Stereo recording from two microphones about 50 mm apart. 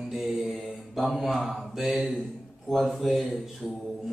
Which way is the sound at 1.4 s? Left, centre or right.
Centre.